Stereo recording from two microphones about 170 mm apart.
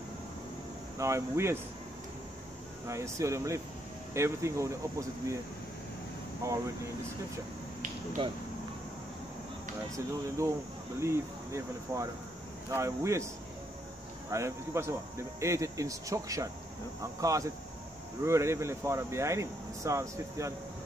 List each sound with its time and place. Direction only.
0.9 s speech: 15° right (ahead or behind)
2.9 s speech: 20° right (ahead or behind)
6.4 s speech: 20° right (ahead or behind)
8.2 s speech: 30° right (ahead or behind)
9.9 s speech: 20° right (ahead or behind)
14.3 s speech: 15° right (ahead or behind)